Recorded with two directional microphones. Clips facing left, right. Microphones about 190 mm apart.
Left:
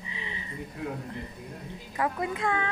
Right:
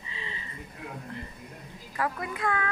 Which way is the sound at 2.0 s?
20° left (ahead or behind).